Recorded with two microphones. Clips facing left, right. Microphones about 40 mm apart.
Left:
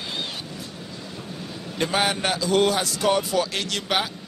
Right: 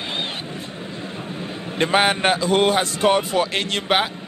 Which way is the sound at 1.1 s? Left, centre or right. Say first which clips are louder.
Right 5 dB; right.